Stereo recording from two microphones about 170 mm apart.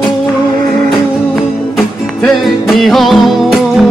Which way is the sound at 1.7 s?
Centre (ahead or behind).